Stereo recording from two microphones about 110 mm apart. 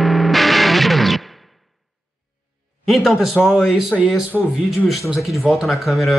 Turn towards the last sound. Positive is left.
turn(degrees=0)  # may be behind; listen again after turning